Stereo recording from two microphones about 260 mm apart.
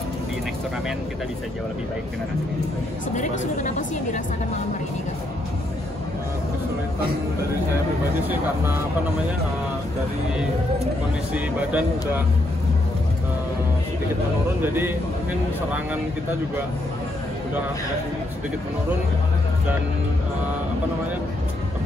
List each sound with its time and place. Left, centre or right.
3.2 s speech: left
11.3 s speech: centre
14.6 s speech: centre